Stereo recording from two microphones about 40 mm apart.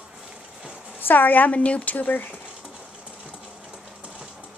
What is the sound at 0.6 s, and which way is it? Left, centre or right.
Horse, right.